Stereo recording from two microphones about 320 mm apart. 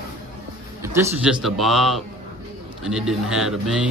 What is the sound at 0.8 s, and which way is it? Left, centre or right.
A man's voice, centre.